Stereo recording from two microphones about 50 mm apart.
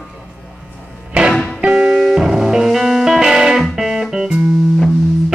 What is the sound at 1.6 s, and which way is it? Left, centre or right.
Music, centre.